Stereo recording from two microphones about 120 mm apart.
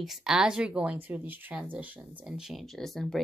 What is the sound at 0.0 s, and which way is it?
Speech, 5° right (ahead or behind).